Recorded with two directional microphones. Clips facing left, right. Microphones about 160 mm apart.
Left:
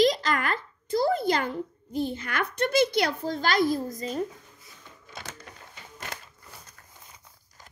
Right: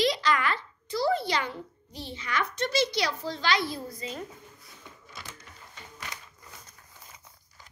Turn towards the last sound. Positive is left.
turn(degrees=55)  # may be behind; listen again after turning